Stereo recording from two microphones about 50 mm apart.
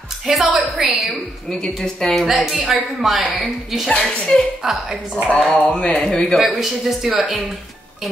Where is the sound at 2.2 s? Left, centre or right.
Centre.